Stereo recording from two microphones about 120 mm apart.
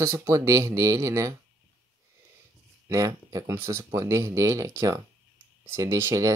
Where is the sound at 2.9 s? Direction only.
25° right (ahead or behind).